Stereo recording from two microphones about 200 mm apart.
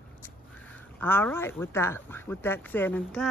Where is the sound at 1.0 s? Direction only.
10° left (ahead or behind).